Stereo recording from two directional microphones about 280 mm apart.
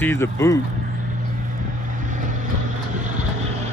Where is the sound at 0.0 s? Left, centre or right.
Centre.